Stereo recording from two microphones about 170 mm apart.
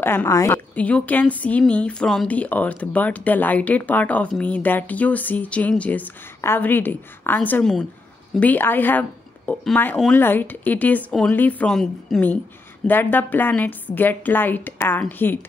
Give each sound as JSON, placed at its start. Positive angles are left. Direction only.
{"t": 0.0, "sound": "a woman's voice", "side_deg": 10}